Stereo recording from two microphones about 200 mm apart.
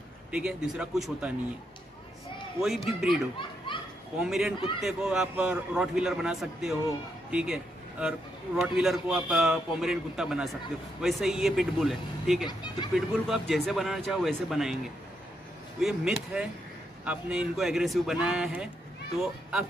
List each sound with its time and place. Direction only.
0.3 s a man's voice: 5° right (ahead or behind)
2.6 s a man's voice: centre (ahead or behind)
3.1 s a child's voice: 25° left (ahead or behind)
4.2 s a man's voice: 5° right (ahead or behind)
12.4 s speech: 20° left (ahead or behind)
12.9 s a man's voice: centre (ahead or behind)
15.8 s a man's voice: centre (ahead or behind)